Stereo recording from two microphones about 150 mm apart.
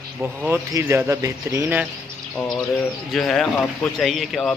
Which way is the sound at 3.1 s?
Centre (ahead or behind).